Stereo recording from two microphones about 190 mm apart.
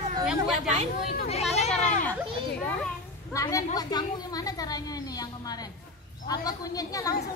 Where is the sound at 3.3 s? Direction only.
20° left (ahead or behind).